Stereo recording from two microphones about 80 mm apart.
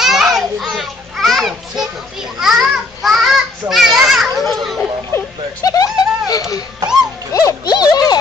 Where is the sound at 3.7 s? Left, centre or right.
Centre.